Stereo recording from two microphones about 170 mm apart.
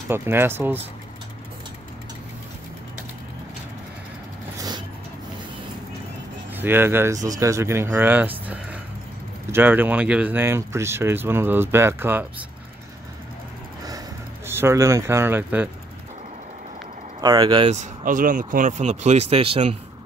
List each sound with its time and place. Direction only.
0.1 s speech: 15° right (ahead or behind)
4.6 s vehicle: 25° right (ahead or behind)
6.5 s speech: 10° right (ahead or behind)
13.8 s a sound: 20° right (ahead or behind)
17.2 s speech: 25° right (ahead or behind)
17.6 s speech: 45° right (ahead or behind)